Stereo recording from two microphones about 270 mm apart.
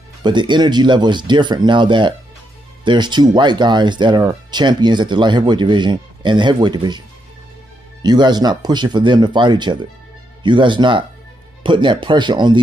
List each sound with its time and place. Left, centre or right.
0.2 s speech: centre
8.0 s speech: centre